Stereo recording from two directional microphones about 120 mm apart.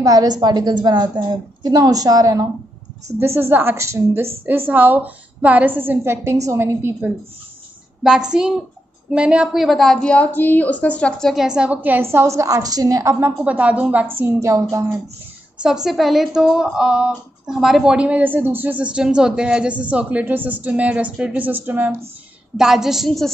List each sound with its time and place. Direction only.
0.0 s a woman's voice: 30° right (ahead or behind)
3.2 s a woman's voice: 20° right (ahead or behind)
8.0 s a woman's voice: 5° right (ahead or behind); by 13.3 s 25° right (ahead or behind)
13.4 s a woman's voice: 10° right (ahead or behind)
14.2 s a woman's voice: 25° right (ahead or behind)
15.6 s a woman's voice: 5° right (ahead or behind)
22.6 s speech: 5° right (ahead or behind)